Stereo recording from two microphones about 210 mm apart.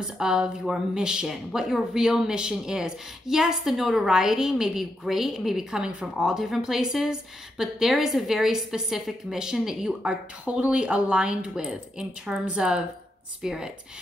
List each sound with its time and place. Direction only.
0.2 s a woman's voice: 5° right (ahead or behind)